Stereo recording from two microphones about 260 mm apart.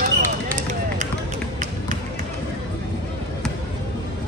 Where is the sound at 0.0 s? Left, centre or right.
Right.